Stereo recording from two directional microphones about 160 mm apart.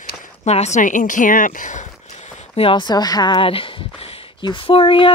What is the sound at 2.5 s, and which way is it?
Speech, 30° left (ahead or behind).